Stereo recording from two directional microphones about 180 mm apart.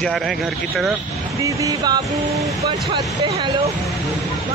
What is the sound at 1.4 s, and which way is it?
Music, 20° right (ahead or behind).